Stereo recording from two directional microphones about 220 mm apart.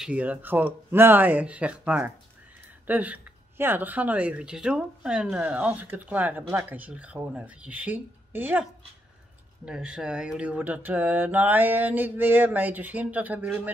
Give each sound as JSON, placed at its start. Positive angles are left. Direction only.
{"t": 0.0, "sound": "speech", "side_deg": -5}
{"t": 9.7, "sound": "speech", "side_deg": -5}